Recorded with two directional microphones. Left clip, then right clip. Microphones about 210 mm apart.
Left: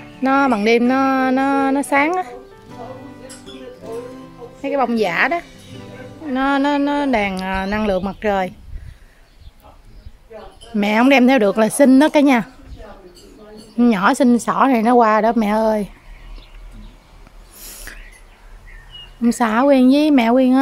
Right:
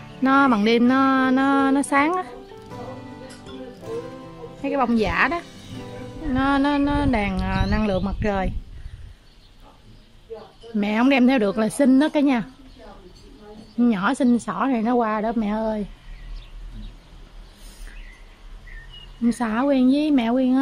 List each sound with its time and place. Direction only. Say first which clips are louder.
0.2 s speech: left 2 dB; 5° left (ahead or behind)
3.8 s music: left 2 dB; centre (ahead or behind)
4.6 s speech: left 4 dB; centre (ahead or behind)
10.8 s a woman's voice: left 6 dB; 10° left (ahead or behind)
13.7 s a woman's voice: left 7 dB; 15° left (ahead or behind)
17.9 s bird: left 11 dB; 20° left (ahead or behind)
19.2 s a woman's voice: left 7 dB; 15° left (ahead or behind)